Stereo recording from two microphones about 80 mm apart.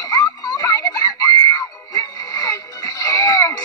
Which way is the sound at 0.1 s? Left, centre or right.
Left.